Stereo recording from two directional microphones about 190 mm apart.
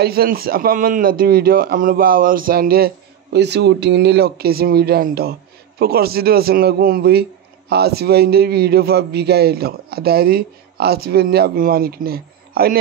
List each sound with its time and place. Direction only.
0.0 s speech: 55° right (ahead or behind)
3.3 s a man's voice: 60° right (ahead or behind)